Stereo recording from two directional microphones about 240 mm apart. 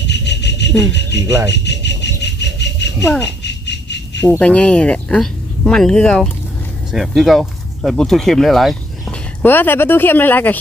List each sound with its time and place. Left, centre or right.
0.0 s music: left
1.1 s speech: centre
1.5 s a sound: left
3.0 s a child's voice: centre
3.4 s squeal: left
4.2 s speech: centre